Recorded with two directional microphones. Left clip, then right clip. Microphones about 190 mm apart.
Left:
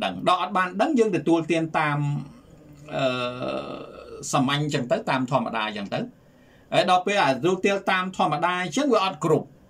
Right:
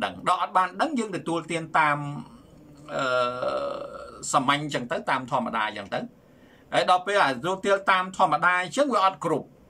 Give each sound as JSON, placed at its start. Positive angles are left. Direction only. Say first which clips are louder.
{"t": 0.0, "sound": "speech", "louder": "left 2 dB", "side_deg": 15}